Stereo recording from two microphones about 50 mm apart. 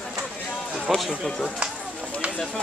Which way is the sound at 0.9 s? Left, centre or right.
Centre.